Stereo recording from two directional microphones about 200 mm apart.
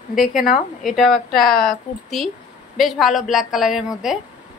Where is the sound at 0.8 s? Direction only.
Centre (ahead or behind).